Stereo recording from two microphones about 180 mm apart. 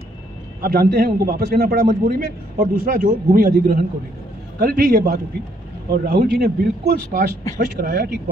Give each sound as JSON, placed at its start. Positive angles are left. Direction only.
{"t": 0.6, "sound": "a man's voice", "side_deg": -55}